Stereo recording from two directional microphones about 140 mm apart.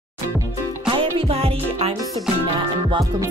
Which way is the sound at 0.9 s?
40° right (ahead or behind).